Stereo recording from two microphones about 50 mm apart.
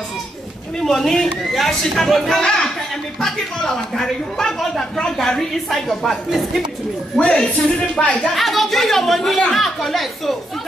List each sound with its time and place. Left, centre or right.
0.7 s a woman's voice: centre
7.2 s speech: centre
8.4 s a woman's voice: centre